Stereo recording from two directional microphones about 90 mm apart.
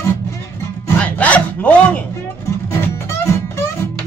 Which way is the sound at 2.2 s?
30° left (ahead or behind).